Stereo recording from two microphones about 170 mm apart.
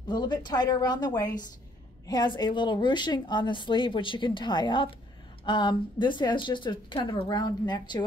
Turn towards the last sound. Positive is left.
turn(degrees=25)  # may be behind; listen again after turning